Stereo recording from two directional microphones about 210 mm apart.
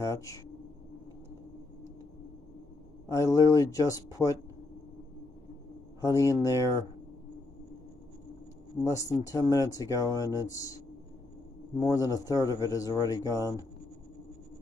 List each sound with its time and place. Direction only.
0.0 s speech: 15° left (ahead or behind)
3.1 s speech: 15° left (ahead or behind)
5.9 s speech: 15° left (ahead or behind)
8.8 s speech: 15° left (ahead or behind)
11.8 s speech: 15° left (ahead or behind)